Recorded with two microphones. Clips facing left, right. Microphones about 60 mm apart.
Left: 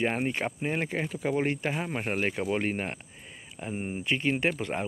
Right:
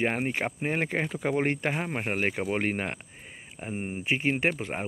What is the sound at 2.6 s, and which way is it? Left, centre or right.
Speech, right.